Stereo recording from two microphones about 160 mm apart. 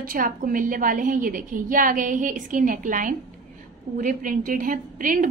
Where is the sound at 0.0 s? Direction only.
60° right (ahead or behind).